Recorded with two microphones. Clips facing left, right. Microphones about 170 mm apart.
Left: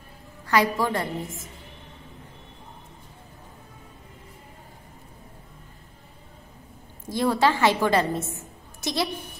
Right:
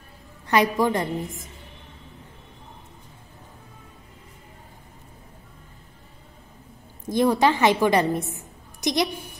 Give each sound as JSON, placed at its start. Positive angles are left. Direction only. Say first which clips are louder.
{"t": 0.5, "sound": "a woman's voice", "louder": "right 2 dB", "side_deg": -20}
{"t": 7.1, "sound": "a woman's voice", "louder": "right 3 dB", "side_deg": -20}